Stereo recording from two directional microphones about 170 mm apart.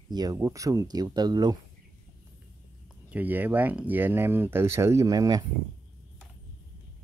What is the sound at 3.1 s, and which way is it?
Speech, 10° right (ahead or behind).